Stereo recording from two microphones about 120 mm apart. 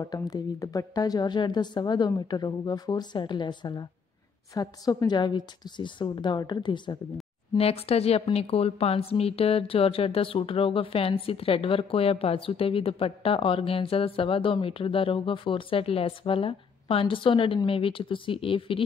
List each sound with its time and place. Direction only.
0.0 s a woman's voice: 30° left (ahead or behind)
7.5 s a woman's voice: 55° left (ahead or behind)